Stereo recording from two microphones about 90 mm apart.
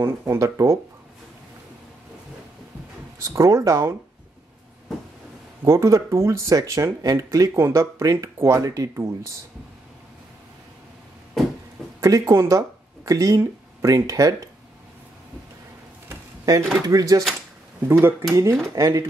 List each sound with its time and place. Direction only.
0.0 s speech: 30° right (ahead or behind)
3.2 s speech: 35° right (ahead or behind)
5.6 s speech: 35° right (ahead or behind)
12.0 s speech: 35° right (ahead or behind)
16.5 s speech: 45° right (ahead or behind)
17.8 s speech: 25° right (ahead or behind)